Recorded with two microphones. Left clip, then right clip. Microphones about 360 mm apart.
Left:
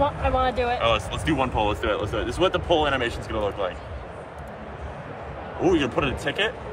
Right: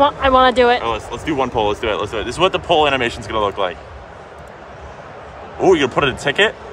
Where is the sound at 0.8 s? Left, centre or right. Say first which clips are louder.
Right 2 dB; centre.